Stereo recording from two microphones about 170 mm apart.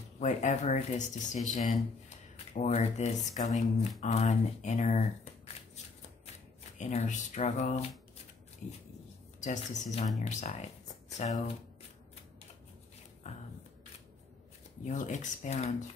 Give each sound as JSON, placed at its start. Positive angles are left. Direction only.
{"t": 0.2, "sound": "speech", "side_deg": 45}
{"t": 6.8, "sound": "speech", "side_deg": 45}
{"t": 9.4, "sound": "speech", "side_deg": 45}
{"t": 13.2, "sound": "a sound", "side_deg": 40}
{"t": 14.9, "sound": "speech", "side_deg": 45}